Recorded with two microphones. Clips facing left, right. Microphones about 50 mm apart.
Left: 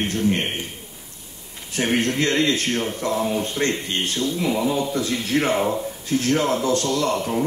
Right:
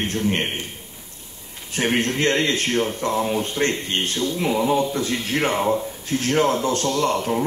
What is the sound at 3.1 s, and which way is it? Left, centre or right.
Speech, centre.